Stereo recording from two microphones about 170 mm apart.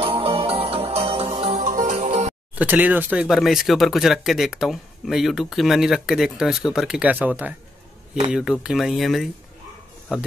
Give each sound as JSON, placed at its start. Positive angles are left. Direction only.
{"t": 0.0, "sound": "music", "side_deg": -35}
{"t": 2.5, "sound": "speech", "side_deg": -10}